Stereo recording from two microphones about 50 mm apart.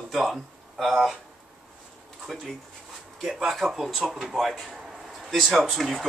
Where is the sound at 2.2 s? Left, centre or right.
Centre.